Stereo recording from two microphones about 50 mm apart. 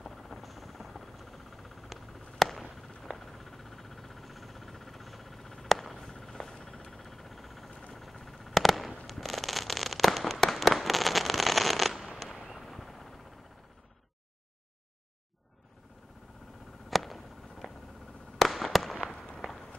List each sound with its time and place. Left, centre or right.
0.0 s a sound: centre
9.0 s fireworks: centre
16.9 s a sound: centre
18.4 s fireworks: centre
19.1 s walk: centre
19.4 s run: centre